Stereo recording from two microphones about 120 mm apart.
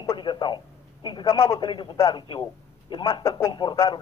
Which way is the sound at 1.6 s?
40° left (ahead or behind).